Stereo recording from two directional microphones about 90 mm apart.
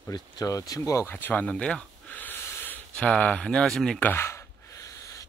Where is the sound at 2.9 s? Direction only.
10° left (ahead or behind).